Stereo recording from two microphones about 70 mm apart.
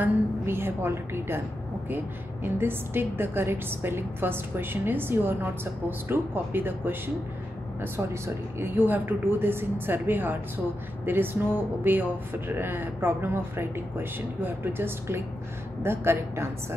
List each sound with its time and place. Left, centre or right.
0.0 s a woman's voice: right